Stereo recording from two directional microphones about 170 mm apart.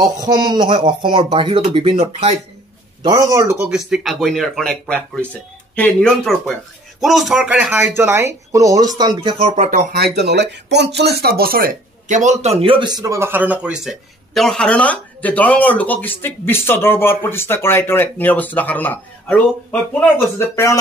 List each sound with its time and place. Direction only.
0.0 s speech: 25° right (ahead or behind)
3.0 s speech: 25° right (ahead or behind); by 9.8 s 40° right (ahead or behind)
9.9 s speech: 75° right (ahead or behind); by 20.7 s 15° left (ahead or behind)